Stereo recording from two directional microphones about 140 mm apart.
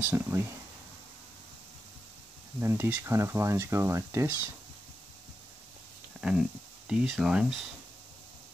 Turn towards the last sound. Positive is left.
turn(degrees=-5)  # may be behind; listen again after turning